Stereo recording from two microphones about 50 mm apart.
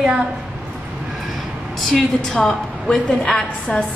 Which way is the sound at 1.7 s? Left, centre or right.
Centre.